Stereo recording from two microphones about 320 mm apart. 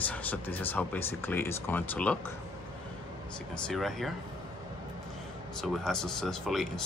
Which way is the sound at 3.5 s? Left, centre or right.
Centre.